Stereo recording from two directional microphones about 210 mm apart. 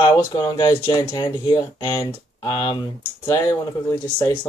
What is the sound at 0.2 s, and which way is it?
Speech, 20° left (ahead or behind).